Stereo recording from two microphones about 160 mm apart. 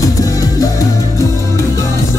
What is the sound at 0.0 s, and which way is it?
Music, 20° left (ahead or behind).